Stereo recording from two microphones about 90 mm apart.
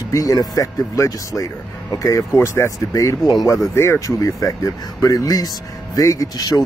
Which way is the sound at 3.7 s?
30° left (ahead or behind).